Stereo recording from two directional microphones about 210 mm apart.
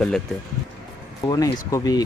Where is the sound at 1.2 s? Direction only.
20° left (ahead or behind).